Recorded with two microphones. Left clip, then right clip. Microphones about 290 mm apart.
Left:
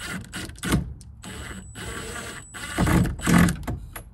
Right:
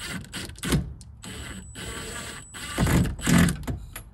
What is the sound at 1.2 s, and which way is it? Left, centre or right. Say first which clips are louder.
Printer: left 1 dB; centre.